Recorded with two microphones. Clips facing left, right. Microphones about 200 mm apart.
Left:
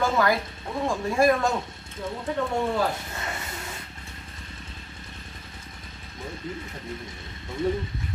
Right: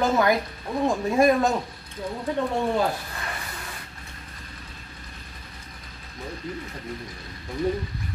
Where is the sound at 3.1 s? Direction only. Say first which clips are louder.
Left 1 dB; 25° left (ahead or behind).